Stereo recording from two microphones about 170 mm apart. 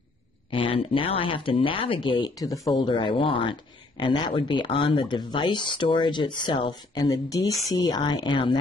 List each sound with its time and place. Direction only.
0.5 s speech: 30° left (ahead or behind)